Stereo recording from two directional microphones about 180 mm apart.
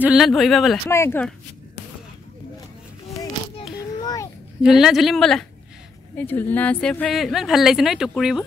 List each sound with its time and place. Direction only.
0.0 s a woman's voice: 5° right (ahead or behind)
0.8 s speech: 15° left (ahead or behind)
4.0 s a sound: 20° left (ahead or behind)
4.6 s a woman's voice: centre (ahead or behind)